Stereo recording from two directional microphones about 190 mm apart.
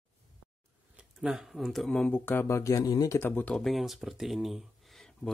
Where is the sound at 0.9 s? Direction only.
5° right (ahead or behind).